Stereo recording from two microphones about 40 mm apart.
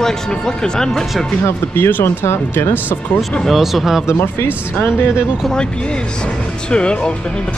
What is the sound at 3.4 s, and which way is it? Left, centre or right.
Speech, centre.